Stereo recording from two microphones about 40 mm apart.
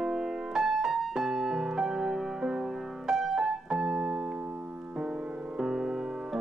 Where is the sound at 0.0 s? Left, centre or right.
Centre.